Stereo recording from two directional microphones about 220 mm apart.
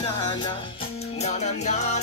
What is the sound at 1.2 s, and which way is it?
Music, 30° left (ahead or behind).